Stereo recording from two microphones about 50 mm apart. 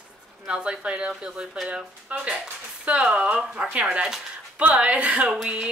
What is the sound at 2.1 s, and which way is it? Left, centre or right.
Speech, right.